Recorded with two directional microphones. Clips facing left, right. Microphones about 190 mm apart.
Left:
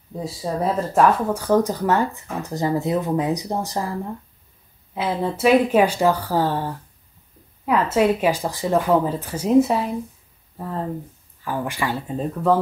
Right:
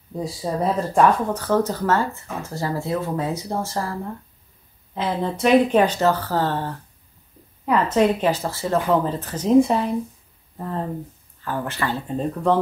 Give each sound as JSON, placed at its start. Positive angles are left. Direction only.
{"t": 0.2, "sound": "speech", "side_deg": 0}
{"t": 4.9, "sound": "speech", "side_deg": 5}
{"t": 11.4, "sound": "speech", "side_deg": 10}